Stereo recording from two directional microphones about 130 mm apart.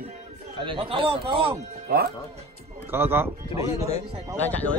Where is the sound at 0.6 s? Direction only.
40° right (ahead or behind).